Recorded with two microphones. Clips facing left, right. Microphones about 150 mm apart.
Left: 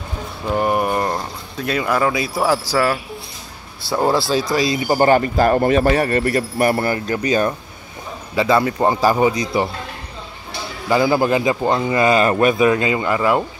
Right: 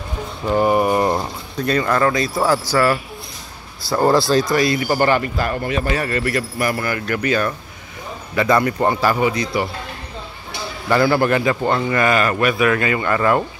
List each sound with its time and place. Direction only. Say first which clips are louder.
0.5 s a sound: right 3 dB; centre (ahead or behind)
1.6 s a man's voice: right 1 dB; 5° left (ahead or behind)
4.7 s speech: left 1 dB; 20° left (ahead or behind)
5.0 s speech: left 8 dB; 40° left (ahead or behind)
7.2 s speech: left 1 dB; 20° left (ahead or behind)
8.5 s a man's voice: left 1 dB; 15° left (ahead or behind)
10.9 s a man's voice: even; 15° left (ahead or behind)